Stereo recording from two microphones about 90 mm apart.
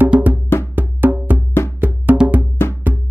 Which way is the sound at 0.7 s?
20° right (ahead or behind).